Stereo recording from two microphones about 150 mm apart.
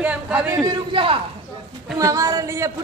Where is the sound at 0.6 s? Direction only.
30° right (ahead or behind).